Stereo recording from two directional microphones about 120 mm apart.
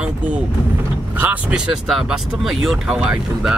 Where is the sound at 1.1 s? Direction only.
10° right (ahead or behind).